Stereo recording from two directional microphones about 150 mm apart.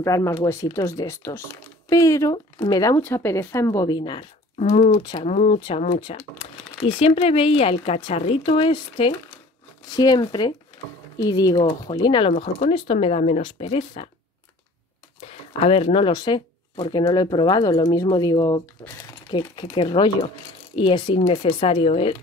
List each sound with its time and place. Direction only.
0.0 s speech: 20° left (ahead or behind)
3.0 s speech: 15° left (ahead or behind); by 4.3 s 30° left (ahead or behind)
4.6 s speech: 50° left (ahead or behind)
5.9 s speech: 35° left (ahead or behind)
15.1 s speech: 40° left (ahead or behind); by 18.6 s 25° left (ahead or behind)
19.3 s speech: 35° left (ahead or behind)